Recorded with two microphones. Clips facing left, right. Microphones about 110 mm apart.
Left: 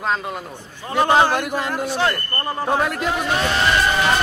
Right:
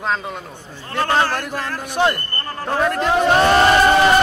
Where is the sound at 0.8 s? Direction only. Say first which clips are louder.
Left 3 dB; 15° left (ahead or behind).